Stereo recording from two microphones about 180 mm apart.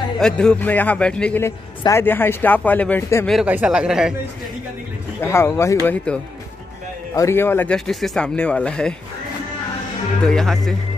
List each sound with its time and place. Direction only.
0.2 s speech: 5° left (ahead or behind)
3.3 s speech: 5° right (ahead or behind)
5.2 s speech: 15° left (ahead or behind)
10.2 s speech: 5° left (ahead or behind)